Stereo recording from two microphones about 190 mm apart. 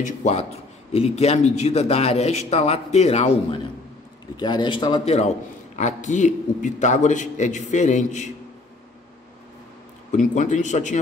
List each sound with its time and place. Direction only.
0.0 s a man's voice: 35° left (ahead or behind)
4.4 s a man's voice: 20° left (ahead or behind); by 8.3 s 40° left (ahead or behind)
10.1 s a man's voice: 40° left (ahead or behind)